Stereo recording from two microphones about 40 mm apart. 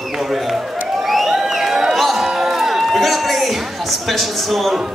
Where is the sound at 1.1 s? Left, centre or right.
Centre.